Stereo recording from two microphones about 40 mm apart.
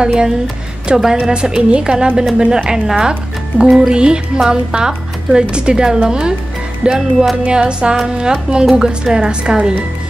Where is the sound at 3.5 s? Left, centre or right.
Right.